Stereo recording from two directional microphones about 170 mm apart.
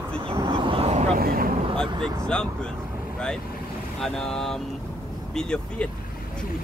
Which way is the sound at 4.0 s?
5° left (ahead or behind).